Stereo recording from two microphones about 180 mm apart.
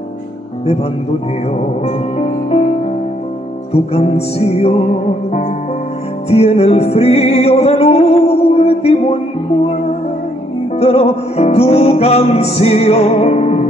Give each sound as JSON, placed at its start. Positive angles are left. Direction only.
{"t": 1.9, "sound": "music", "side_deg": 40}
{"t": 3.7, "sound": "music", "side_deg": 35}
{"t": 6.3, "sound": "music", "side_deg": 35}
{"t": 10.8, "sound": "music", "side_deg": 35}